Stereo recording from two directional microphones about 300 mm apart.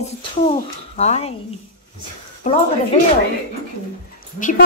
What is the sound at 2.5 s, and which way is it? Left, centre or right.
Speech, left.